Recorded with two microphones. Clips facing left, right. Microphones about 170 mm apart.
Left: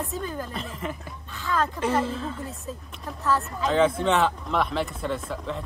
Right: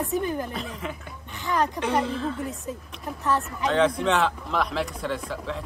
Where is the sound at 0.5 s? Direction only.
Centre (ahead or behind).